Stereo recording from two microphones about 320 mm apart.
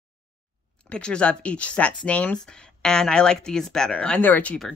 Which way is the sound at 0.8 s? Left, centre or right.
Centre.